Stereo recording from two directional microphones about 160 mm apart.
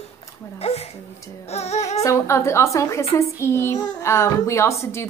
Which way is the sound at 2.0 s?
15° left (ahead or behind).